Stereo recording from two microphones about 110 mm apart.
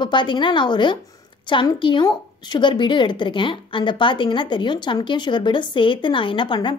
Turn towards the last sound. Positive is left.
turn(degrees=45)  # may be behind; listen again after turning